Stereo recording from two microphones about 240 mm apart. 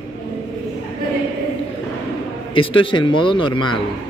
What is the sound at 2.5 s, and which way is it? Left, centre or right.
A man's voice, left.